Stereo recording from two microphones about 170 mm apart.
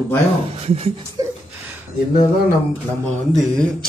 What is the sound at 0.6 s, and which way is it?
Speech, 35° right (ahead or behind).